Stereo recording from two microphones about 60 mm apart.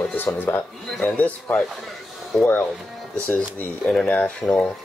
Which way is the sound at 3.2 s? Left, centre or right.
Left.